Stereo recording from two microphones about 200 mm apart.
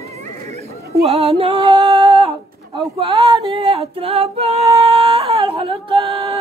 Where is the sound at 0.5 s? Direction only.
30° right (ahead or behind).